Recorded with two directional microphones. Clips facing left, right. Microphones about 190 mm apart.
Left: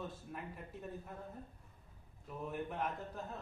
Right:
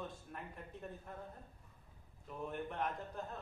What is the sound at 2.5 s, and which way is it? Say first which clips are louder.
Speech: left 1 dB; 5° left (ahead or behind).